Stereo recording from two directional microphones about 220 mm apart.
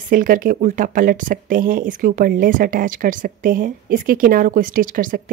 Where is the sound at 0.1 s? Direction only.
40° right (ahead or behind).